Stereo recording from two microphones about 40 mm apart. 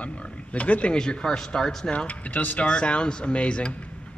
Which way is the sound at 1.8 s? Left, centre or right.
Left.